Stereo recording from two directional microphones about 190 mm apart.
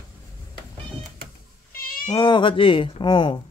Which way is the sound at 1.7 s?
50° left (ahead or behind).